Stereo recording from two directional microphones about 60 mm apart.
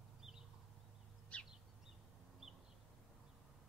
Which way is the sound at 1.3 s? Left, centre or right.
Left.